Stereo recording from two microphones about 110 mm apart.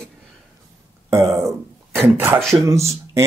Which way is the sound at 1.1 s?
25° right (ahead or behind).